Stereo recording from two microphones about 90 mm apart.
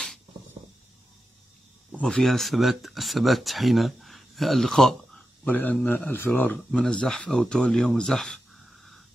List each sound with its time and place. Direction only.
2.0 s speech: 5° left (ahead or behind)
5.4 s a man's voice: 20° left (ahead or behind)
6.5 s speech: 10° left (ahead or behind)